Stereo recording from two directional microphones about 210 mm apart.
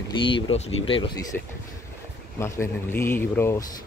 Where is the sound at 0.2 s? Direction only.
25° left (ahead or behind).